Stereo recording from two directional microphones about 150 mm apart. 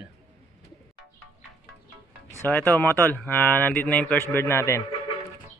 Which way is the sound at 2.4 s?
10° left (ahead or behind).